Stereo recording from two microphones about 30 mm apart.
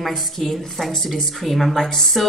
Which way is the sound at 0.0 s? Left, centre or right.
Centre.